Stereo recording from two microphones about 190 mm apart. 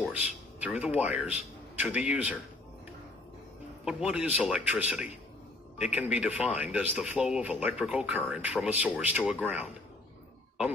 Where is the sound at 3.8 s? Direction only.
5° right (ahead or behind).